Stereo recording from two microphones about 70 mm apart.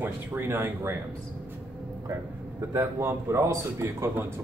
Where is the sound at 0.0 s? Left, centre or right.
Right.